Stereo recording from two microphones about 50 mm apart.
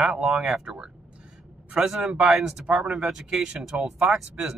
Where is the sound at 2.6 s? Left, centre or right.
Right.